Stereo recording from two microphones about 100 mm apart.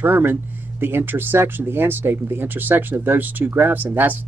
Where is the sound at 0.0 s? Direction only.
20° right (ahead or behind).